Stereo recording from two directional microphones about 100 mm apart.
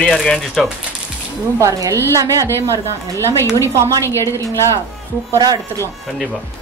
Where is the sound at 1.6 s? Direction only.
30° right (ahead or behind).